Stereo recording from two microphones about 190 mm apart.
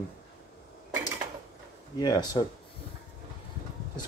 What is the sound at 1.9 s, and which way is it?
Speech, 20° left (ahead or behind).